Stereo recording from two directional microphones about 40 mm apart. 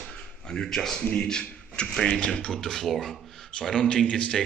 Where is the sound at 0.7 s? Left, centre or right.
Centre.